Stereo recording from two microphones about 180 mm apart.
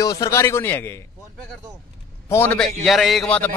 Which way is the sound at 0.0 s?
20° left (ahead or behind).